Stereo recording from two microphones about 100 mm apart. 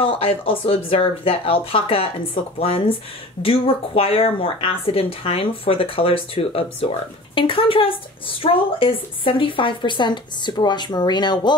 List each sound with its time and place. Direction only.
0.0 s speech: 70° left (ahead or behind); by 11.5 s 45° left (ahead or behind)